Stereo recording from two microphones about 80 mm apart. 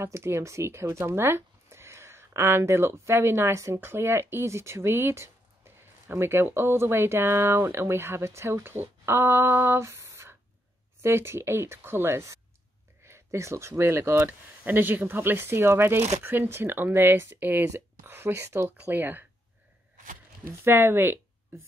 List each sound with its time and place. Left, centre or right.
0.0 s speech: right
20.4 s speech: right